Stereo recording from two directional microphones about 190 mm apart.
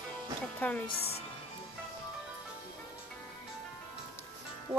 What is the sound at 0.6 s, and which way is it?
Speech, 10° left (ahead or behind).